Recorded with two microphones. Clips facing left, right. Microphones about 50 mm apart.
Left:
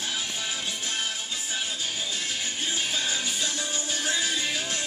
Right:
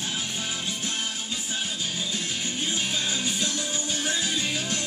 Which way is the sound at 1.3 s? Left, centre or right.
Centre.